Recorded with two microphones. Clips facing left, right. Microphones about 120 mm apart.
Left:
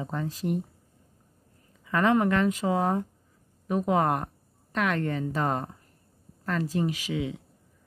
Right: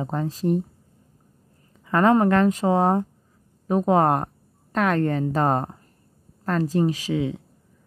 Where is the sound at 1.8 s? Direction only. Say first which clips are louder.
Right 5 dB; 40° right (ahead or behind).